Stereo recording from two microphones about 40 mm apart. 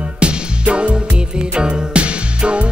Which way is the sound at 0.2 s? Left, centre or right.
Right.